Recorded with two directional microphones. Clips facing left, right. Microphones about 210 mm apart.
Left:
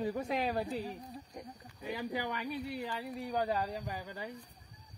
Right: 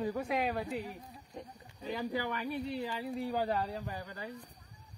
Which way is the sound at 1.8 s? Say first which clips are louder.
Right 2 dB; 15° left (ahead or behind).